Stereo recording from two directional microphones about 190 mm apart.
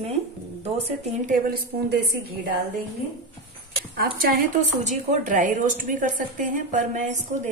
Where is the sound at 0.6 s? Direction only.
35° right (ahead or behind).